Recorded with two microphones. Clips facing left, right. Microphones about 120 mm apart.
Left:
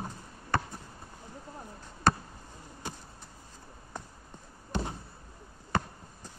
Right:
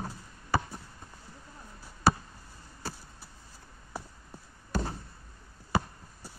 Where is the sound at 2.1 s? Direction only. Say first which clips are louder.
Right 1 dB; 5° right (ahead or behind).